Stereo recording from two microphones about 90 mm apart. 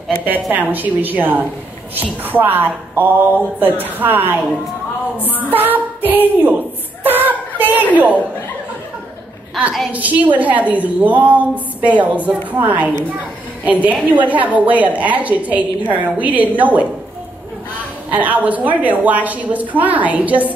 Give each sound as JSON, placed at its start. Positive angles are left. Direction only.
{"t": 0.2, "sound": "a woman's voice", "side_deg": -20}
{"t": 5.4, "sound": "female singing", "side_deg": -20}
{"t": 7.0, "sound": "a woman's voice", "side_deg": -20}
{"t": 9.9, "sound": "a woman's voice", "side_deg": -15}
{"t": 18.1, "sound": "a woman's voice", "side_deg": -20}